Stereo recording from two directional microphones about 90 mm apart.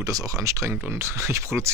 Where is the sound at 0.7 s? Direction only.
20° right (ahead or behind).